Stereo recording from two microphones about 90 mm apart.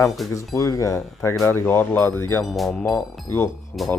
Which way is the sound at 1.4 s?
25° left (ahead or behind).